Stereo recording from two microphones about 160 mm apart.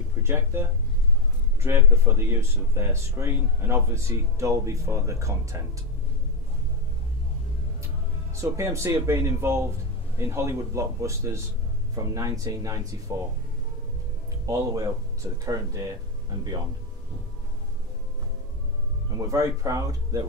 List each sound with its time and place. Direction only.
0.2 s speech: 15° right (ahead or behind)
8.4 s speech: 20° right (ahead or behind)
14.4 s speech: 20° right (ahead or behind)
19.1 s speech: 20° right (ahead or behind)